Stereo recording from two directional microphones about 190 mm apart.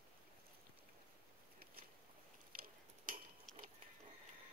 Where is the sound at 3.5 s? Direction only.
5° left (ahead or behind).